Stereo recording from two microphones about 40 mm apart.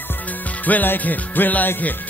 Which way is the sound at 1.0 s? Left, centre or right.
Left.